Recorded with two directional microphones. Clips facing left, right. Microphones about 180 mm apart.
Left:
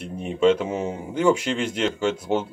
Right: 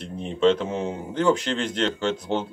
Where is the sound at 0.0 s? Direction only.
10° left (ahead or behind).